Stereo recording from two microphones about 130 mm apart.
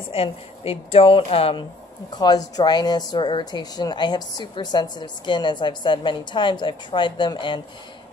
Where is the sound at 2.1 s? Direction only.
30° left (ahead or behind).